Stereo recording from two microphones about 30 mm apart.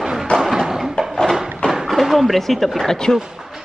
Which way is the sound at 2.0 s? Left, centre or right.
Centre.